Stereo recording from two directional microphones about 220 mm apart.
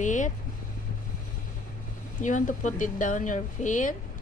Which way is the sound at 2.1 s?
35° left (ahead or behind).